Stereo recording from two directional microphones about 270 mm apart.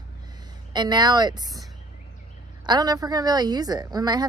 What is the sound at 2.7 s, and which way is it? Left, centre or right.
A woman's voice, centre.